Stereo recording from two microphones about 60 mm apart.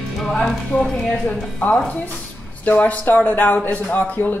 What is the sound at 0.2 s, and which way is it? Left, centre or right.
Speech, centre.